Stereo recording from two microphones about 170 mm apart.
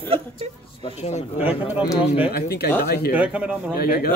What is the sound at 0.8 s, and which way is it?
Speech, 40° left (ahead or behind).